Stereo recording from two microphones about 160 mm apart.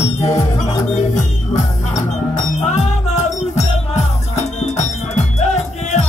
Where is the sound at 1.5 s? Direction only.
45° left (ahead or behind).